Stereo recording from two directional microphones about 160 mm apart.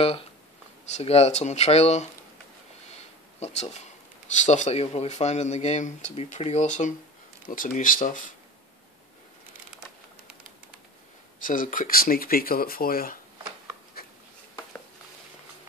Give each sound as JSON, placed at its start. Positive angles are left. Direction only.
{"t": 0.9, "sound": "speech", "side_deg": 40}
{"t": 3.3, "sound": "speech", "side_deg": 40}
{"t": 7.4, "sound": "speech", "side_deg": 60}
{"t": 11.4, "sound": "speech", "side_deg": 55}
{"t": 14.0, "sound": "a sound", "side_deg": 70}